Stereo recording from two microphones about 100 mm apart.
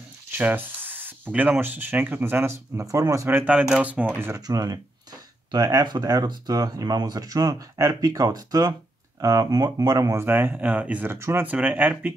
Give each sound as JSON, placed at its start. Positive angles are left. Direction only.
{"t": 0.3, "sound": "speech", "side_deg": -15}
{"t": 3.3, "sound": "speech", "side_deg": -15}
{"t": 4.3, "sound": "speech", "side_deg": -35}
{"t": 10.2, "sound": "speech", "side_deg": -20}